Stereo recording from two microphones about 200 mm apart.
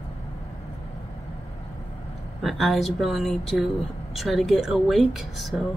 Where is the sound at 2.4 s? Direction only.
Centre (ahead or behind).